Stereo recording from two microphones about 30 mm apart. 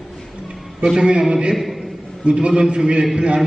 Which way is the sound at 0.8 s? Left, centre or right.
Right.